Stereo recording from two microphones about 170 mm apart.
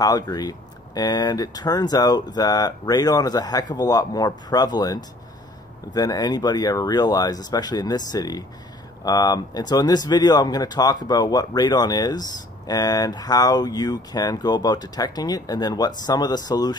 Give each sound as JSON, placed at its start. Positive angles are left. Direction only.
{"t": 0.0, "sound": "speech", "side_deg": 20}